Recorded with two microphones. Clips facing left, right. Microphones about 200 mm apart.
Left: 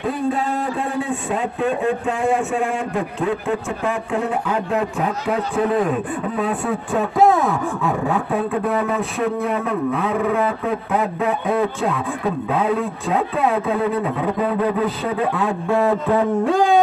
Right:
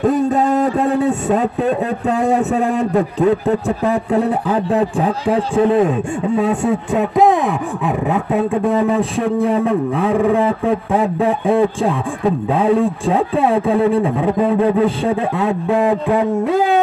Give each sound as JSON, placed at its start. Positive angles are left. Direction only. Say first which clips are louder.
{"t": 0.0, "sound": "a man's voice", "louder": "right 7 dB", "side_deg": -45}